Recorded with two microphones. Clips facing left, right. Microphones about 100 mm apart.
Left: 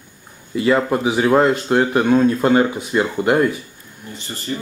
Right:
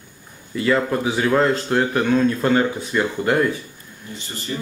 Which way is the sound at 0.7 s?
20° left (ahead or behind).